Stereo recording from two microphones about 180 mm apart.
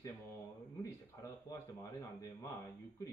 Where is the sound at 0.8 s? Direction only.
20° left (ahead or behind).